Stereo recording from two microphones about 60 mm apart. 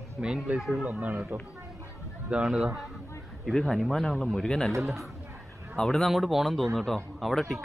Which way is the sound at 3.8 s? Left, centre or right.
Centre.